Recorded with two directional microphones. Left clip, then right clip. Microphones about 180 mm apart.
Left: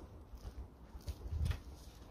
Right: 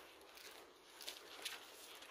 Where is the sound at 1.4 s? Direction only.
65° left (ahead or behind).